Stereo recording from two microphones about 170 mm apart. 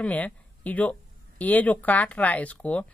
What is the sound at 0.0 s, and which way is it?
Speech, 10° left (ahead or behind).